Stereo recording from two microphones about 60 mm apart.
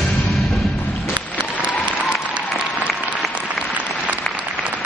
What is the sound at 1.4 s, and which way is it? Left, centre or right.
Applause, centre.